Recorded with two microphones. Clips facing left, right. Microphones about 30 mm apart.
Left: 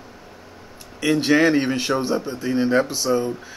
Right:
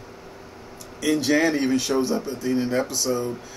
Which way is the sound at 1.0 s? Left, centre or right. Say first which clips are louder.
Left 3 dB; left.